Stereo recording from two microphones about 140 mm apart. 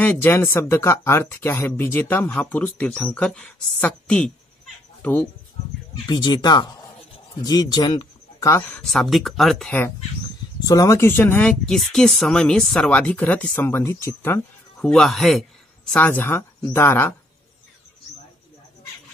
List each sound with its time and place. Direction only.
0.0 s speech: 15° left (ahead or behind)
6.0 s speech: 30° left (ahead or behind); by 8.8 s 15° left (ahead or behind)
8.8 s speech: centre (ahead or behind)
10.6 s speech: 25° left (ahead or behind)
14.9 s speech: centre (ahead or behind)
15.9 s speech: 10° left (ahead or behind)